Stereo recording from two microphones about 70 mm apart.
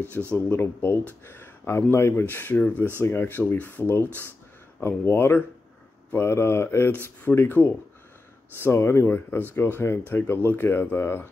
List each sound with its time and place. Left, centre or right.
0.2 s speech: left